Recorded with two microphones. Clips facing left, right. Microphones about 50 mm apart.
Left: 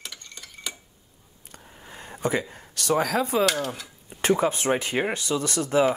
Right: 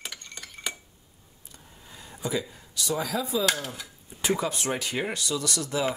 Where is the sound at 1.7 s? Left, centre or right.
Left.